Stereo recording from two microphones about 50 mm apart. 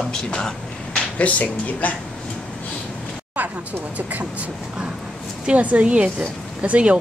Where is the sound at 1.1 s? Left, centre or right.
Left.